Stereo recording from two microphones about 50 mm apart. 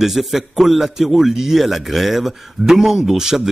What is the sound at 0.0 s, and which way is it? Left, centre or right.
A man's voice, centre.